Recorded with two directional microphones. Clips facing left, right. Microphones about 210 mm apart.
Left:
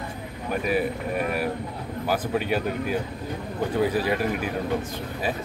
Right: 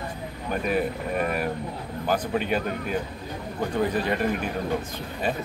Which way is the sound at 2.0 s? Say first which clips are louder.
Even; 5° left (ahead or behind).